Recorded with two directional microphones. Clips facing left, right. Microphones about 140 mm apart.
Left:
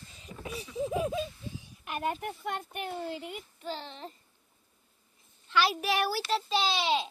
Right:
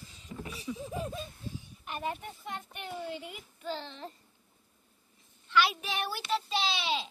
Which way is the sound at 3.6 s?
20° left (ahead or behind).